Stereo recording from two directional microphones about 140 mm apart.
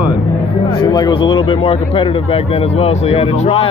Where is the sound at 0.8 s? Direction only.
30° left (ahead or behind).